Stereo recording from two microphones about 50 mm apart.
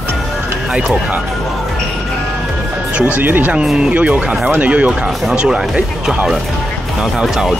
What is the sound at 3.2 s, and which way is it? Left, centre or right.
Speech, right.